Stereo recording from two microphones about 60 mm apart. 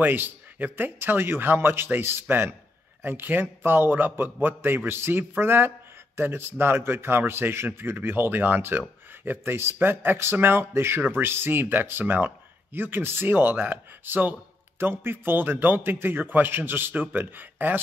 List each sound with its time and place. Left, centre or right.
0.0 s a man's voice: right